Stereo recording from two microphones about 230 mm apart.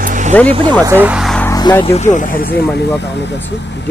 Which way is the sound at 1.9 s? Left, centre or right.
Left.